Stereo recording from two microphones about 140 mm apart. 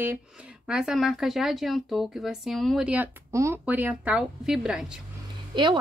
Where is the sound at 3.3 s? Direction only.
20° right (ahead or behind).